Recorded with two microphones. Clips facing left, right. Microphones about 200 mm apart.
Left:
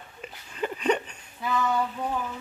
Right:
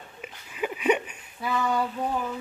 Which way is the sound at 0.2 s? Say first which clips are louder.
Even; 5° right (ahead or behind).